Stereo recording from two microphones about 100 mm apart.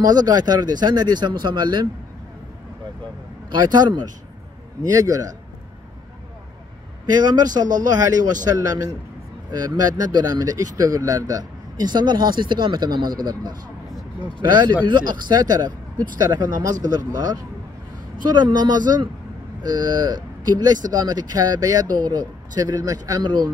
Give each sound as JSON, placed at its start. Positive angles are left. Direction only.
{"t": 0.0, "sound": "speech", "side_deg": -45}
{"t": 3.5, "sound": "speech", "side_deg": -45}
{"t": 7.1, "sound": "speech", "side_deg": -45}
{"t": 23.2, "sound": "speech", "side_deg": -45}